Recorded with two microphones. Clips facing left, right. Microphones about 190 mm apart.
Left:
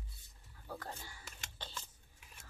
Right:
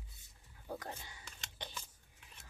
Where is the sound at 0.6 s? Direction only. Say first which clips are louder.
Right 2 dB; 20° right (ahead or behind).